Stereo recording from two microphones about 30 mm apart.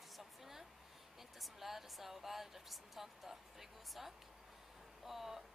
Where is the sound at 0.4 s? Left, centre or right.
Centre.